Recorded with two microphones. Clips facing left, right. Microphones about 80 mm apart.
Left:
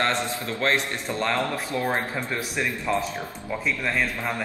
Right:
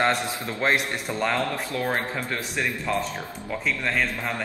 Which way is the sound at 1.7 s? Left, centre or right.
Left.